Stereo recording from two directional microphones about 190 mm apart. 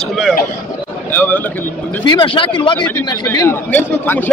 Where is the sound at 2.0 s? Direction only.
25° left (ahead or behind).